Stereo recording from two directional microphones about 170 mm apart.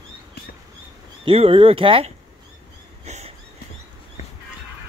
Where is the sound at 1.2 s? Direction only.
35° right (ahead or behind).